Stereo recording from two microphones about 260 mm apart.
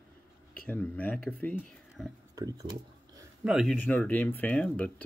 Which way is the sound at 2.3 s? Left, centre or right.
Centre.